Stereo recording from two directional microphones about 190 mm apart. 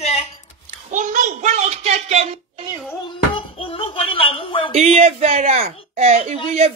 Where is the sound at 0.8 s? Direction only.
40° right (ahead or behind).